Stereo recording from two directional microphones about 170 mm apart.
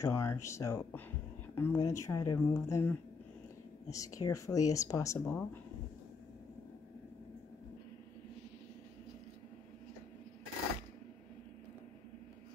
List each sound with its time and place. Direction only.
0.0 s speech: 15° left (ahead or behind)
3.9 s speech: 20° left (ahead or behind)